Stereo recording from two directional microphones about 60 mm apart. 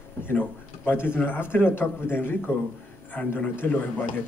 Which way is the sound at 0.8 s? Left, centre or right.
Left.